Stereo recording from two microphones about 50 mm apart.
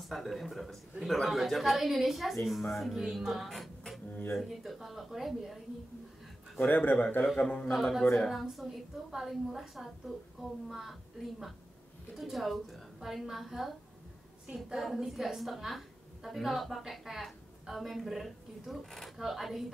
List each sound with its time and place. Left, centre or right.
0.0 s a woman's voice: centre
6.7 s speech: left
7.3 s speech: left
7.7 s a woman's voice: centre